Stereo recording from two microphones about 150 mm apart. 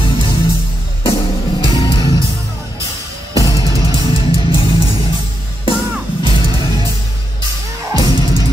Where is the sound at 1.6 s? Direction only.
35° left (ahead or behind).